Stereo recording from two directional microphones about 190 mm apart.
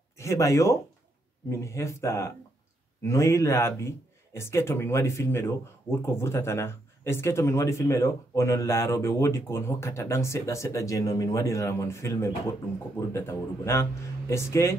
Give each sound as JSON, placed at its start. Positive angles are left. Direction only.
{"t": 0.2, "sound": "speech", "side_deg": 15}